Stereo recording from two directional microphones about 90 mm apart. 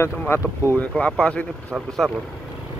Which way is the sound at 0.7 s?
15° left (ahead or behind).